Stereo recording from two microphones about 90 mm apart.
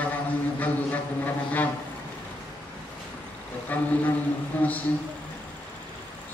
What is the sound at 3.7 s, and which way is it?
Speech, 20° left (ahead or behind).